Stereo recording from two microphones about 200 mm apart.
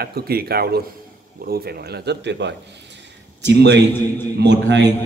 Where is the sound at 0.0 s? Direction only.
50° right (ahead or behind).